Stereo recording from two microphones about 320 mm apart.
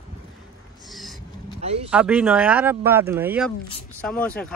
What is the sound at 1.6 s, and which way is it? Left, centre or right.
Speech, centre.